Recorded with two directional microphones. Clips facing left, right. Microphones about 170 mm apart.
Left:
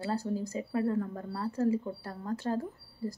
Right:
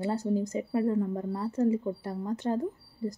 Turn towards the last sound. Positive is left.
turn(degrees=-20)  # may be behind; listen again after turning